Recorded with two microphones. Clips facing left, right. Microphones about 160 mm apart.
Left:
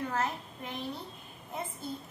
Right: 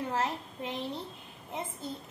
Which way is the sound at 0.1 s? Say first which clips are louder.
Right 1 dB; 25° right (ahead or behind).